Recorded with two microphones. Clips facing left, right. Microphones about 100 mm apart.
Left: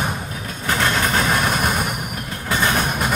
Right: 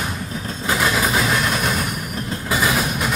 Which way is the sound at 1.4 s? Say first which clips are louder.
Left 1 dB; 50° left (ahead or behind).